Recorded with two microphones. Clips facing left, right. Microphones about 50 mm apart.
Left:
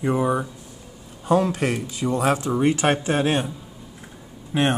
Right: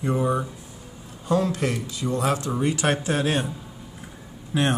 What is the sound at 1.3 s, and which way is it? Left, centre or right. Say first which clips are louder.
Speech: left 3 dB; left.